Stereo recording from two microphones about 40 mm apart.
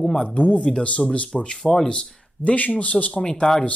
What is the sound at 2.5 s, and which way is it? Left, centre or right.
Speech, left.